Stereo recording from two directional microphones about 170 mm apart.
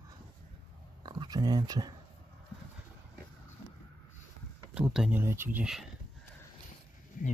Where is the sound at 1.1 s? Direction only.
25° right (ahead or behind).